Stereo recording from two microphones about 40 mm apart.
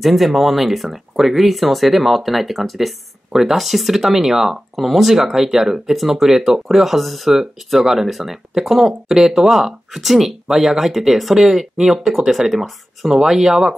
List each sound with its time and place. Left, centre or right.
0.0 s speech: centre